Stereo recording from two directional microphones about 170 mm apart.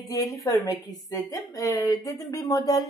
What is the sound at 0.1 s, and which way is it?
A woman's voice, 20° left (ahead or behind).